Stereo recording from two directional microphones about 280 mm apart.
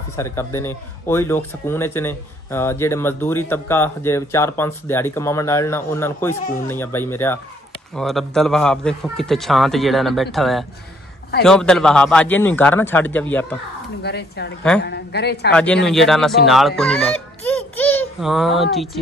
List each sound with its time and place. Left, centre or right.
0.1 s a man's voice: centre
14.0 s a woman's voice: left
15.5 s a man's voice: centre